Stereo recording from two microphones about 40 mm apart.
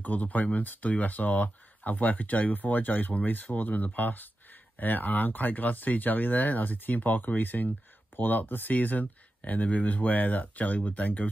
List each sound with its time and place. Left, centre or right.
0.0 s speech: left